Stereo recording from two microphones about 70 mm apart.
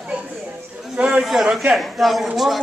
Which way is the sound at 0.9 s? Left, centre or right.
Centre.